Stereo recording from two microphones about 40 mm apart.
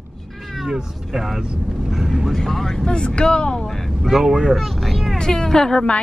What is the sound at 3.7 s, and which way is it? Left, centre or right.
Vehicle, centre.